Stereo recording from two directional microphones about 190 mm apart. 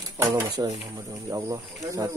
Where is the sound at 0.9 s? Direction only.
20° right (ahead or behind).